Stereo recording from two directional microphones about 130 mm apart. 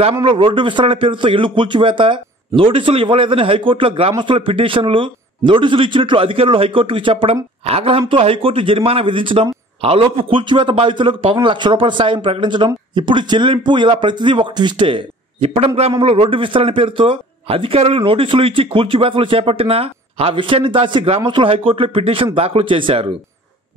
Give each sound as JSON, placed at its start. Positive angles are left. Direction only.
{"t": 0.2, "sound": "speech", "side_deg": -40}